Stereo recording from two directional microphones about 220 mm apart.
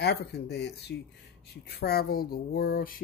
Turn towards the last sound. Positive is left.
turn(degrees=40)  # may be behind; listen again after turning